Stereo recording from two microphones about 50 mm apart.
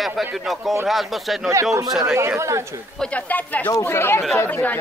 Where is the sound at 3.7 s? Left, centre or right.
Left.